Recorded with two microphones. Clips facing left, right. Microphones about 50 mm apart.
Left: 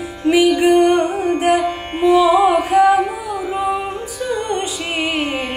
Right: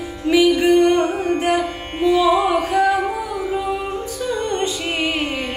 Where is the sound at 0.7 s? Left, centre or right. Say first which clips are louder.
Left 1 dB; left.